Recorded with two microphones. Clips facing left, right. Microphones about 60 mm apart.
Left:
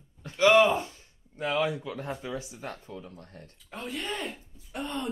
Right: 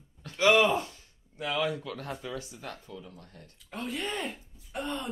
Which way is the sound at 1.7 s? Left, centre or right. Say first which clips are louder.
Left 1 dB; centre.